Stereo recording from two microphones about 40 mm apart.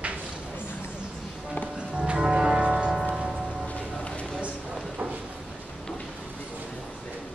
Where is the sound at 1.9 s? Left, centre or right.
Right.